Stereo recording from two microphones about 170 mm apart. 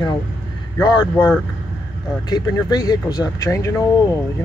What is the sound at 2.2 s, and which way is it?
Speech, 20° left (ahead or behind).